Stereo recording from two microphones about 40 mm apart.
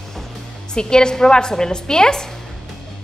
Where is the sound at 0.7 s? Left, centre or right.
Centre.